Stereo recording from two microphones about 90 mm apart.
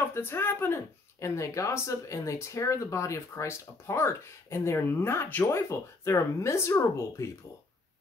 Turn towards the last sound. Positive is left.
turn(degrees=30)  # may be behind; listen again after turning